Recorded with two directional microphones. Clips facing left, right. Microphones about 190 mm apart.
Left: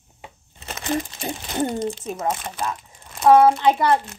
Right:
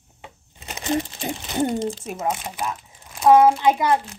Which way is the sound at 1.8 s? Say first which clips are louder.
Even; 25° right (ahead or behind).